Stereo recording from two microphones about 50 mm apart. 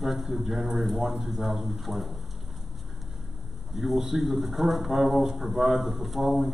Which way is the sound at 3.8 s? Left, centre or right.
Centre.